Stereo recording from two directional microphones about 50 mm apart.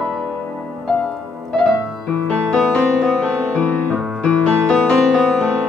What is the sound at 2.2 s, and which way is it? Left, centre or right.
Music, centre.